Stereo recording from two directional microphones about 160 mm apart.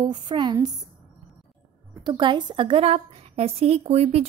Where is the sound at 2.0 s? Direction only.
30° right (ahead or behind).